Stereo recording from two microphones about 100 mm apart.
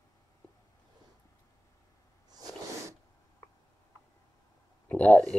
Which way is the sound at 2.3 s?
40° right (ahead or behind).